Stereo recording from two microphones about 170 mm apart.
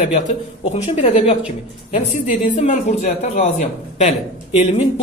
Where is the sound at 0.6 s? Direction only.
35° left (ahead or behind).